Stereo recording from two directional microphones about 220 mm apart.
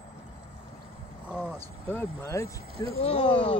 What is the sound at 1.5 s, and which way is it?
Speech, 10° left (ahead or behind).